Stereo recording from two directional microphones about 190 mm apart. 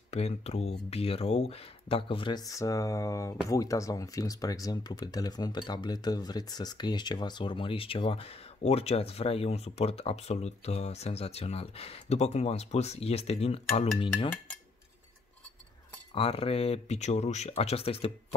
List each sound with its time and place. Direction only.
0.1 s speech: 35° left (ahead or behind)
16.2 s speech: 30° left (ahead or behind)